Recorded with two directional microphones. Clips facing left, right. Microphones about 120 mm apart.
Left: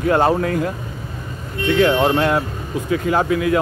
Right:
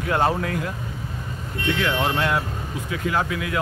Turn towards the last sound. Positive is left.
turn(degrees=35)  # may be behind; listen again after turning